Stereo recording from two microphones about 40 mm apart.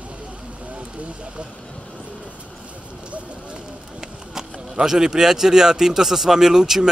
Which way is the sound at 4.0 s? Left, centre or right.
Centre.